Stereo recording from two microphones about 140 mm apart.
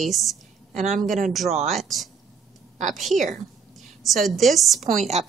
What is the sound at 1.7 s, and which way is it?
A woman's voice, centre (ahead or behind).